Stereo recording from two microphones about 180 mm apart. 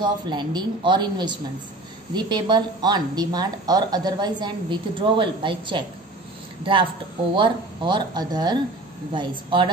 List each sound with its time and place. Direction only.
0.0 s a woman's voice: 25° right (ahead or behind)